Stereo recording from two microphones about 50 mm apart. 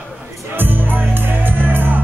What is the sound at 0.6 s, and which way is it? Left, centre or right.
Music, right.